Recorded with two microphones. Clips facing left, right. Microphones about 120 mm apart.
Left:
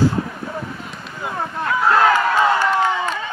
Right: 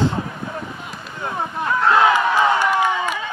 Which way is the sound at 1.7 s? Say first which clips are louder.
Even; 5° left (ahead or behind).